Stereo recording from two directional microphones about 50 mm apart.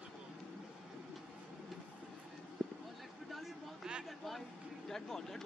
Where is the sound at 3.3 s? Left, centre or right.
Centre.